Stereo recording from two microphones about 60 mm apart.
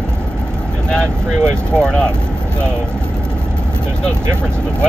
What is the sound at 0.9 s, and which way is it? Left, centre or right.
Speech, centre.